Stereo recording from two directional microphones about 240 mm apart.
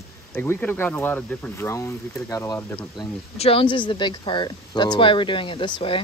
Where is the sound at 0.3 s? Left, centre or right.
Centre.